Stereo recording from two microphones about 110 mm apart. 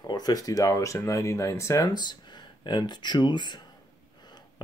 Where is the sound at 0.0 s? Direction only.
35° left (ahead or behind).